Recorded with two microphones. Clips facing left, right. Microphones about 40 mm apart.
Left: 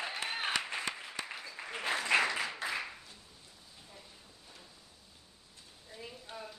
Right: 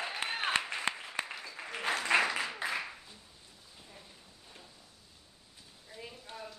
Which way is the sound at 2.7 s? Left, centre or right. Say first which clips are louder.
Right 1 dB; centre.